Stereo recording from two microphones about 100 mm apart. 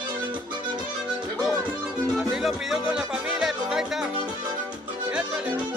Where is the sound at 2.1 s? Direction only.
5° right (ahead or behind).